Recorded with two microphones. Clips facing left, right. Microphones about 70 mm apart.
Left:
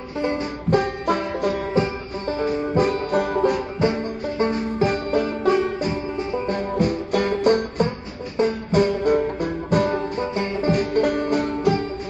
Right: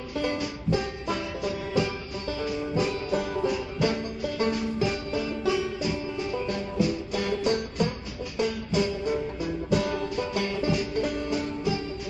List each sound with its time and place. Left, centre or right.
0.2 s music: left
0.7 s music: left
1.7 s music: left
3.8 s music: left
6.7 s music: left
10.7 s music: left